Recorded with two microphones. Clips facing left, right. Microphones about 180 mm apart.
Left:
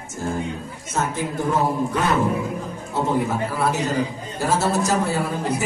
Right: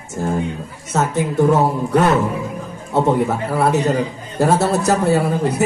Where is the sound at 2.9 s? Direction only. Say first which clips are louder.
Right 6 dB; 60° right (ahead or behind).